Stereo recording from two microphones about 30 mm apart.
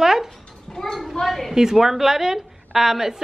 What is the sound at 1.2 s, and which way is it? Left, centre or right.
Speech, centre.